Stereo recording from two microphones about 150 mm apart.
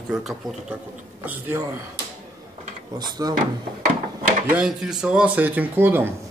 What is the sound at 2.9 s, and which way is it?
Speech, 30° right (ahead or behind).